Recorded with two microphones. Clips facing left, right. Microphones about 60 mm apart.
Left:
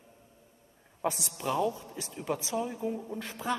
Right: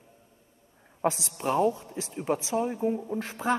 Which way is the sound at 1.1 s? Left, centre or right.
Right.